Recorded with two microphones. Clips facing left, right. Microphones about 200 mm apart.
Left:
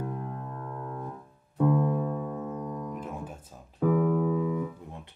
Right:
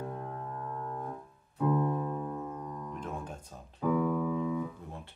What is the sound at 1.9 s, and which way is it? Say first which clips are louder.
Music: left 4 dB; 75° left (ahead or behind).